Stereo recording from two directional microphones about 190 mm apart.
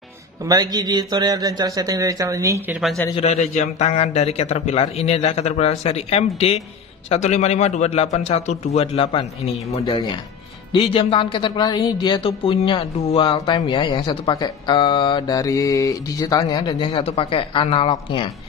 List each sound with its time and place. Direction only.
0.5 s a man's voice: 20° right (ahead or behind); by 3.0 s 5° right (ahead or behind)
3.2 s a man's voice: 35° left (ahead or behind)